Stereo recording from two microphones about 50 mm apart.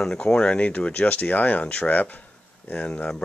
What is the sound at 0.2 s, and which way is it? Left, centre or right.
Speech, left.